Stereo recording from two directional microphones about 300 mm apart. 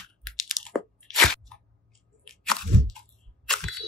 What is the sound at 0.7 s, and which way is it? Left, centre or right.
Crunch, centre.